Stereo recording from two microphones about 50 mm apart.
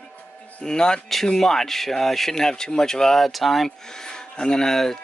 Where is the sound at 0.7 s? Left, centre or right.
Centre.